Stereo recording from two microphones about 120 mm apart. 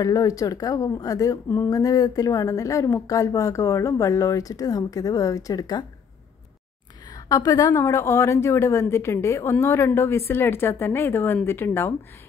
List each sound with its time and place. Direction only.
0.0 s a woman's voice: 30° left (ahead or behind)
7.2 s a woman's voice: 30° left (ahead or behind)